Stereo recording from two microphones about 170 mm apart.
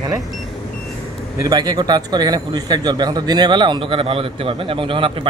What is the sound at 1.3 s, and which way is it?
A man's voice, 20° right (ahead or behind).